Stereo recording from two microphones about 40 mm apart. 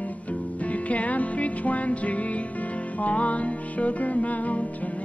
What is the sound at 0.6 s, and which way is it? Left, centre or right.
Music, left.